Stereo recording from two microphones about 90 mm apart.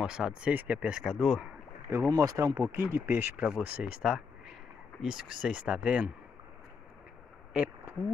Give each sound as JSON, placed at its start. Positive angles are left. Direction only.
{"t": 0.0, "sound": "speech", "side_deg": -10}
{"t": 1.0, "sound": "speech", "side_deg": 0}
{"t": 2.1, "sound": "speech", "side_deg": -40}
{"t": 2.7, "sound": "speech", "side_deg": -25}
{"t": 7.5, "sound": "speech", "side_deg": -20}